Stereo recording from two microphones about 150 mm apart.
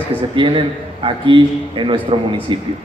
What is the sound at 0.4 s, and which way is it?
A man's voice, 35° right (ahead or behind).